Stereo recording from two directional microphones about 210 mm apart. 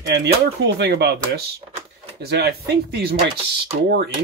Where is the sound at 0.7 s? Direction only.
50° right (ahead or behind).